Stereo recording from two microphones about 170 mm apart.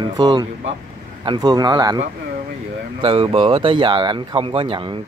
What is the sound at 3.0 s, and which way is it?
Speech, 30° right (ahead or behind).